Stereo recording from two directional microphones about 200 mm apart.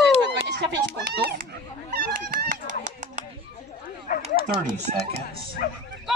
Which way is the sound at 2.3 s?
40° right (ahead or behind).